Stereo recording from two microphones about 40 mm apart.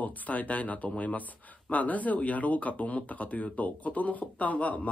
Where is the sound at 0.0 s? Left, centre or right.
Left.